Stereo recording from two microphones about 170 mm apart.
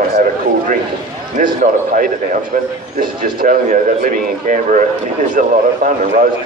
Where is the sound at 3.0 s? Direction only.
55° right (ahead or behind).